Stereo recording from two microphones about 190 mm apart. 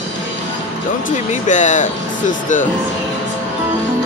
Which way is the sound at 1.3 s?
40° left (ahead or behind).